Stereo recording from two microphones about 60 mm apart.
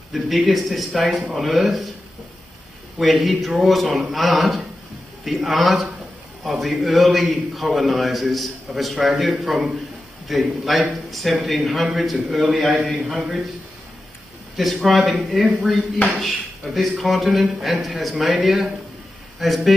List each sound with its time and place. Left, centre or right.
0.1 s a man's voice: centre
1.0 s speech: right
1.3 s a man's voice: centre
3.0 s a man's voice: centre
14.6 s a man's voice: centre